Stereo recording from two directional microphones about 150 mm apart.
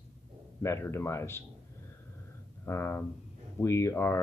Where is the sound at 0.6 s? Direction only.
15° left (ahead or behind).